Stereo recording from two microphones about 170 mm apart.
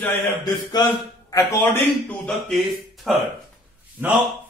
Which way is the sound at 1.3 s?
15° left (ahead or behind).